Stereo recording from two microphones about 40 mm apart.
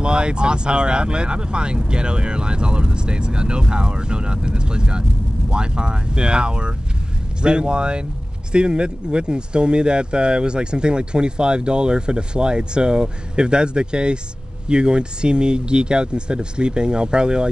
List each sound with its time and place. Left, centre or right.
0.0 s speech: right